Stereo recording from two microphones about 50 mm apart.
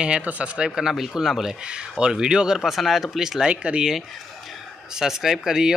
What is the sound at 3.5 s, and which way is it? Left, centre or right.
Speech, right.